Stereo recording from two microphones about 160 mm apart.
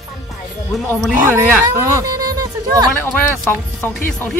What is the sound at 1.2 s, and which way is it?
Speech, 15° right (ahead or behind).